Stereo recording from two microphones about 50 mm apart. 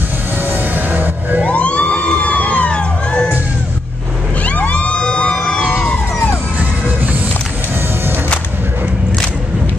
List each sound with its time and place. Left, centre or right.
0.5 s music: right
1.4 s crowd: left
4.5 s music: left